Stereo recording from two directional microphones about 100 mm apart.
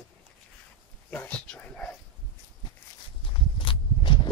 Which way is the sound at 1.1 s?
15° left (ahead or behind).